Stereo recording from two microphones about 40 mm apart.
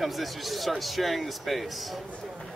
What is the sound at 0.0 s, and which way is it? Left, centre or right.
A man's voice, centre.